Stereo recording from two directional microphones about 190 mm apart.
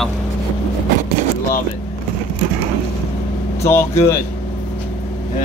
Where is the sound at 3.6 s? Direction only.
15° left (ahead or behind).